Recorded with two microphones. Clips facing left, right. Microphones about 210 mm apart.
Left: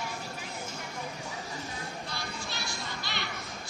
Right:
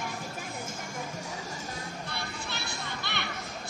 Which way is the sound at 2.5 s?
60° right (ahead or behind).